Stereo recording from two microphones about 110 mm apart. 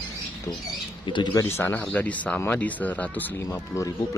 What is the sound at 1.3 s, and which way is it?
Speech, 20° left (ahead or behind).